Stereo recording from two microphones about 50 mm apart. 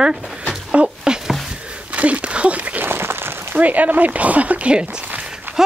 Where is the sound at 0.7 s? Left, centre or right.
Right.